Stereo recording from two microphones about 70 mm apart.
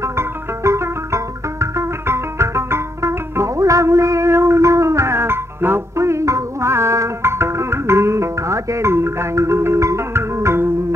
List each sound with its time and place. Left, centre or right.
0.0 s music: right